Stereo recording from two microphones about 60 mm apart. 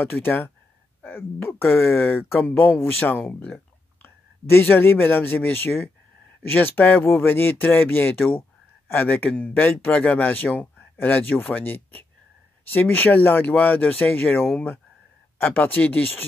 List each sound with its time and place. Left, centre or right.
0.1 s speech: left
4.0 s speech: left
15.4 s speech: left